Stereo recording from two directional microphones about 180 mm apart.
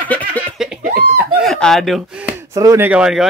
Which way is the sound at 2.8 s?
5° right (ahead or behind).